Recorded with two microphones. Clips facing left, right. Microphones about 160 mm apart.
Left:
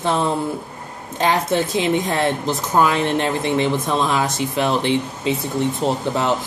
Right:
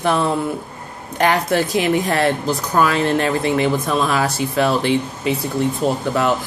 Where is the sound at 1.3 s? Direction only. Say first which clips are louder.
Even; 20° left (ahead or behind).